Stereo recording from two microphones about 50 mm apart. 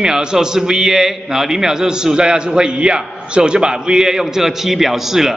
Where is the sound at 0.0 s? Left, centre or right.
Centre.